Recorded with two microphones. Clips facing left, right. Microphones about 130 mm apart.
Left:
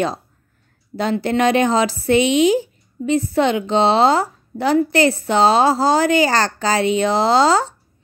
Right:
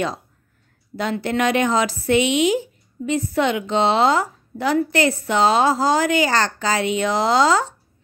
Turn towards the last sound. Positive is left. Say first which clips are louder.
# left 2 dB
turn(degrees=30)  # may be behind; listen again after turning